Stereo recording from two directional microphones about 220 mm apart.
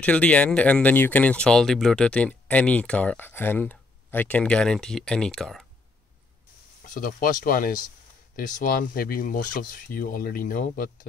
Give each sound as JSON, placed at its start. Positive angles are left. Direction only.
{"t": 0.0, "sound": "speech", "side_deg": 5}
{"t": 6.8, "sound": "speech", "side_deg": 40}